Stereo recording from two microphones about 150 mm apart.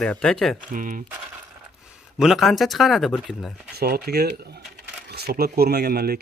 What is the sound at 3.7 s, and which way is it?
Speech, 90° right.